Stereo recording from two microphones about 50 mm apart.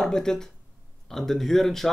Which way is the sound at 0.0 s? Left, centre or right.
Centre.